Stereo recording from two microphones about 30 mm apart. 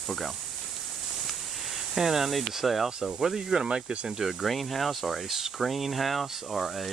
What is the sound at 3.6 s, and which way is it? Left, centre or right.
Speech, right.